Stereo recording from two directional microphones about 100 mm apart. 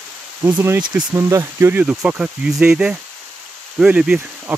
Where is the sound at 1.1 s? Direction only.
25° right (ahead or behind); by 4.6 s 10° right (ahead or behind).